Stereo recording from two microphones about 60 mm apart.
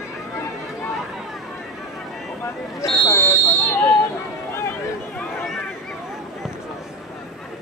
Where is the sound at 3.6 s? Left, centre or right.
Left.